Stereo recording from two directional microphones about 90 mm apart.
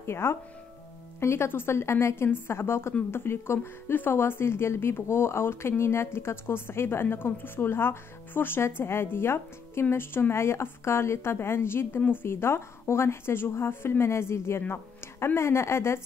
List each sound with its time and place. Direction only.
0.0 s speech: 30° left (ahead or behind)